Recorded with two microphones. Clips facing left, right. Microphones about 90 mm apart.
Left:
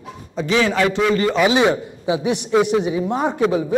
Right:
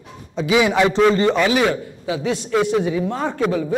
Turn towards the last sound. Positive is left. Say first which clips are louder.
# left 2 dB
turn(degrees=20)  # may be behind; listen again after turning